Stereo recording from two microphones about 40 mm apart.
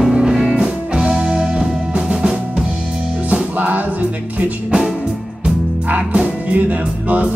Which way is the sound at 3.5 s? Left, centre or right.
Right.